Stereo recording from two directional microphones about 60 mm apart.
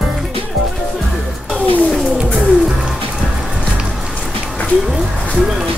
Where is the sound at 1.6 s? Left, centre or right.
Left.